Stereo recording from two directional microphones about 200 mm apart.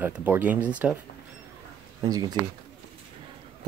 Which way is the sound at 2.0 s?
20° right (ahead or behind).